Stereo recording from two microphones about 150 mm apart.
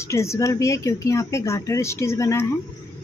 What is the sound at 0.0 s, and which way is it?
A woman's voice, 20° left (ahead or behind).